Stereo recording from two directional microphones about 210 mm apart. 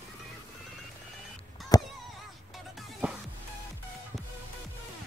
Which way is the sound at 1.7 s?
15° left (ahead or behind).